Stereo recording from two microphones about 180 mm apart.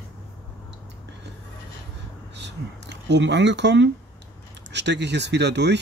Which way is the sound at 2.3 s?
75° right (ahead or behind).